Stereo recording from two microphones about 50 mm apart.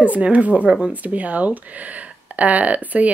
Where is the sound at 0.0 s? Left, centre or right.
Right.